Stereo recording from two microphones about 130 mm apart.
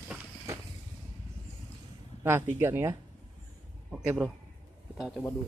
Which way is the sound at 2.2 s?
20° right (ahead or behind).